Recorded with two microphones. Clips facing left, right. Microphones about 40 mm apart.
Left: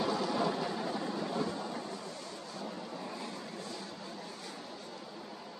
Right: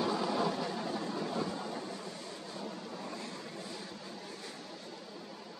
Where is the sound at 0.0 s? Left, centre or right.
Centre.